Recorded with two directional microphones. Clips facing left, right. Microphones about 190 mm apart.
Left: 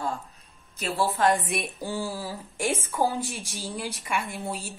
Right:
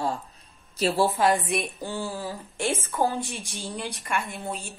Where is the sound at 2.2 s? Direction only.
10° left (ahead or behind).